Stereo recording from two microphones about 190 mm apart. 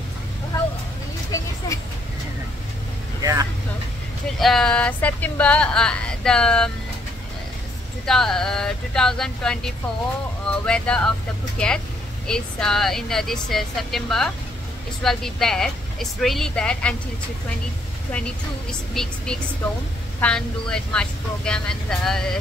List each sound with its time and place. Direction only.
1.6 s a sound: 20° left (ahead or behind)
3.2 s vehicle: 20° right (ahead or behind)
4.4 s speech: centre (ahead or behind)
8.1 s speech: 5° left (ahead or behind)
18.1 s speech: 5° left (ahead or behind)